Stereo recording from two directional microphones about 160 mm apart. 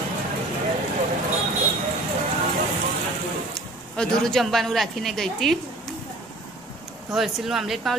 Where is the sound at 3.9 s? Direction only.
Centre (ahead or behind).